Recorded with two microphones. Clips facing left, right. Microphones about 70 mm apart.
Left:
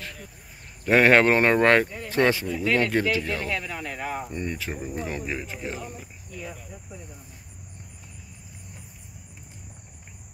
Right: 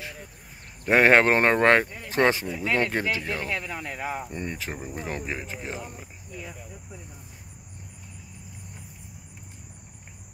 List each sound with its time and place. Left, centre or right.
0.0 s a sound: centre
0.8 s speech: right
4.3 s speech: right
4.7 s speech: centre
5.0 s speech: right